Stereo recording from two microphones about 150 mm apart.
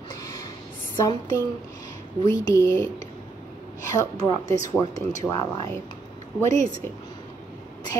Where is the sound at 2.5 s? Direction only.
20° left (ahead or behind).